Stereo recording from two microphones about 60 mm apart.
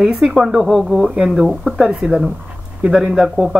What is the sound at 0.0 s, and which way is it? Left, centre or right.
Speech, centre.